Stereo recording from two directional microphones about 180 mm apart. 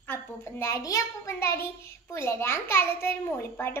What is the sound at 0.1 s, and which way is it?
A child's voice, 15° left (ahead or behind).